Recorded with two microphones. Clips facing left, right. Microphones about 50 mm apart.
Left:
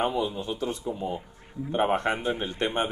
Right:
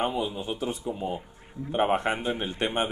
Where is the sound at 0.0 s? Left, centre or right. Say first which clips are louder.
Left 1 dB; centre.